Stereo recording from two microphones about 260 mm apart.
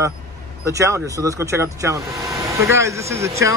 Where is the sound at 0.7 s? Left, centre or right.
Centre.